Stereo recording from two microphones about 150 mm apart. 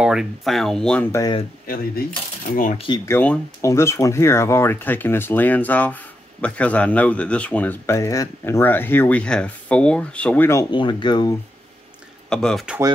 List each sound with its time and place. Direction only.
0.0 s speech: 5° right (ahead or behind)
1.7 s speech: 85° left
2.5 s speech: 65° left (ahead or behind)
3.1 s speech: 15° left (ahead or behind)
10.7 s speech: 30° left (ahead or behind)
12.3 s speech: 5° left (ahead or behind)